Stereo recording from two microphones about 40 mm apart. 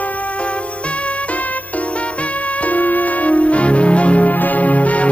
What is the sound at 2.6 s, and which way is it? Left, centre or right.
Music, left.